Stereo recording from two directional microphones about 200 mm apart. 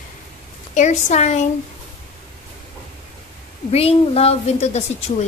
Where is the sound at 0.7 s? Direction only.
35° left (ahead or behind).